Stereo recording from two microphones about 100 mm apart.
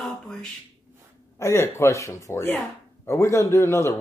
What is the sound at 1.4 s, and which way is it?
Speech, 25° left (ahead or behind).